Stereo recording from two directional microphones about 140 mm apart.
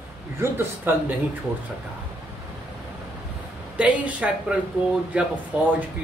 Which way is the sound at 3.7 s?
10° right (ahead or behind).